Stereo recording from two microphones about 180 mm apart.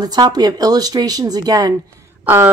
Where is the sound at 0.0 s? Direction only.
25° right (ahead or behind).